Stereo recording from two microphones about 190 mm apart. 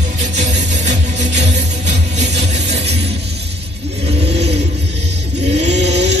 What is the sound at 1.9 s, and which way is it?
Music, 35° right (ahead or behind).